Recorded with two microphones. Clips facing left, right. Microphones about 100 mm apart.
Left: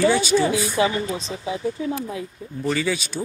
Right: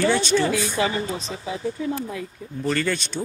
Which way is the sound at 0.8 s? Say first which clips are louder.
Left 2 dB; 20° left (ahead or behind).